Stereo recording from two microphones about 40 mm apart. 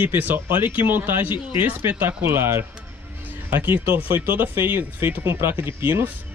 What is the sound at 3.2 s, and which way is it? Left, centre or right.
Music, right.